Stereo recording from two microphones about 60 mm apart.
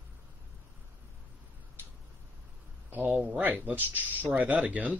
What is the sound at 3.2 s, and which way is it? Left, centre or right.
Speech, right.